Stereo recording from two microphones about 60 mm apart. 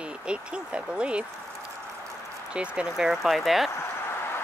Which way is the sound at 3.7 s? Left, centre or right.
Left.